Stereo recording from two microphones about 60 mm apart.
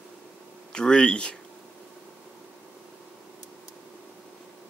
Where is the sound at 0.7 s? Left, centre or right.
Centre.